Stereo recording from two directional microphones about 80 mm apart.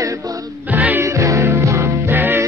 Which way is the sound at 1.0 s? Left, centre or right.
Right.